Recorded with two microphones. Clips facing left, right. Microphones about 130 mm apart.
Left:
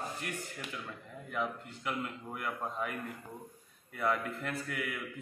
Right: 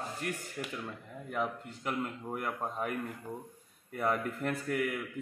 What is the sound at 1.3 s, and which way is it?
A man's voice, 40° right (ahead or behind).